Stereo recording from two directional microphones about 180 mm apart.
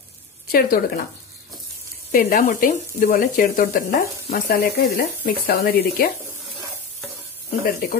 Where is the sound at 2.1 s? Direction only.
60° left (ahead or behind).